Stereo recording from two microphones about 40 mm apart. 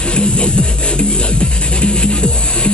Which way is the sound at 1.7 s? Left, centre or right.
Left.